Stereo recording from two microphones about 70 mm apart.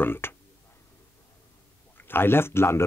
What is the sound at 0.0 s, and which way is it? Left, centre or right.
Speech, left.